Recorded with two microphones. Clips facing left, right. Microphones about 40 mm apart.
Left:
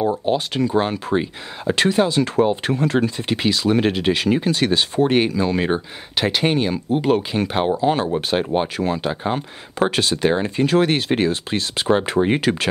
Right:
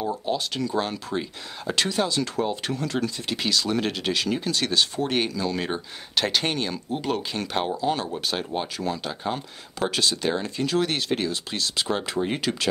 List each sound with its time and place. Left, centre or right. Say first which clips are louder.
0.0 s speech: left 7 dB; left